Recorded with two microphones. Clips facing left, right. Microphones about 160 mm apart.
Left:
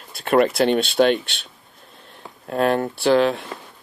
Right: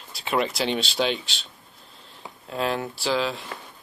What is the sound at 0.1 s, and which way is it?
Speech, 55° left (ahead or behind).